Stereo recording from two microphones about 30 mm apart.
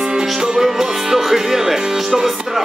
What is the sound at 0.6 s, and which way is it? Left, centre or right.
Music, centre.